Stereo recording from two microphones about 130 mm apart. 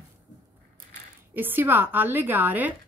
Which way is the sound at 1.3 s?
15° right (ahead or behind).